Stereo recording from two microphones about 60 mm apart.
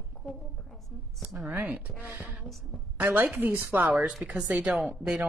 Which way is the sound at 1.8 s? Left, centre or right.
Right.